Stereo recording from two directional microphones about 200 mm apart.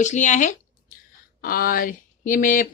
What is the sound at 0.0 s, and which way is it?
Speech, 35° left (ahead or behind).